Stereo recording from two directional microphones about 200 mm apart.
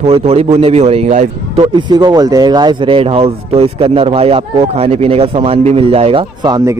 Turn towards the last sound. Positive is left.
turn(degrees=-20)  # may be behind; listen again after turning